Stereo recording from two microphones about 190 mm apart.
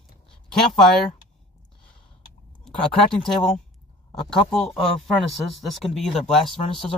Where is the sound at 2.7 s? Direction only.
Centre (ahead or behind).